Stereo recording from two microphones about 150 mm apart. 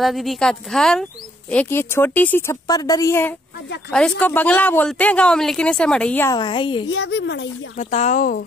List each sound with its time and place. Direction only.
0.0 s a woman's voice: centre (ahead or behind)
2.7 s a woman's voice: 25° left (ahead or behind); by 6.2 s 5° left (ahead or behind)
6.2 s a woman's voice: 30° left (ahead or behind)
7.9 s speech: 55° left (ahead or behind)